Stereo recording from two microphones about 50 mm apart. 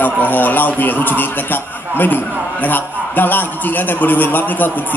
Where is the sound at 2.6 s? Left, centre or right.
Left.